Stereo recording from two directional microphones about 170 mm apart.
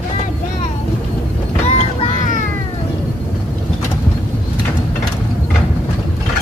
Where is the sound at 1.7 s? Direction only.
40° left (ahead or behind).